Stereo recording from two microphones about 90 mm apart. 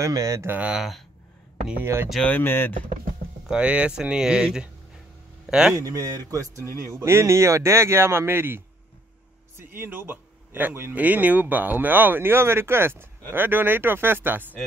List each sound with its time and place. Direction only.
0.0 s speech: 40° right (ahead or behind)
0.5 s speech: 15° right (ahead or behind)
1.8 s speech: 25° right (ahead or behind)
2.2 s speech: 25° left (ahead or behind)
3.4 s speech: 10° right (ahead or behind)
5.8 s speech: 40° right (ahead or behind); by 14.5 s 20° right (ahead or behind)